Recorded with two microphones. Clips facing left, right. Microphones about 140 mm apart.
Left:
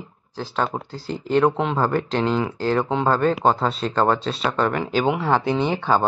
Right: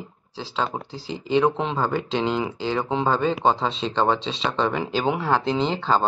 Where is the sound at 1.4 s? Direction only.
Centre (ahead or behind).